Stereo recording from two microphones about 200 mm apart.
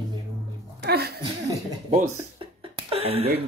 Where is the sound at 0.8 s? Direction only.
55° right (ahead or behind).